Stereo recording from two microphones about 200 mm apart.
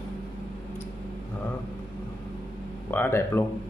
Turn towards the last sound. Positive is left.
turn(degrees=10)  # may be behind; listen again after turning